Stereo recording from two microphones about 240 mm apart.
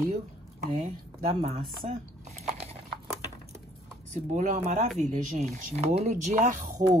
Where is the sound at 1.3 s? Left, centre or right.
Right.